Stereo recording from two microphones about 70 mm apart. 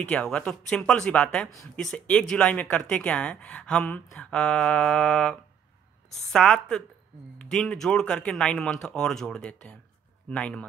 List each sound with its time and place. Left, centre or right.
0.0 s a woman's voice: centre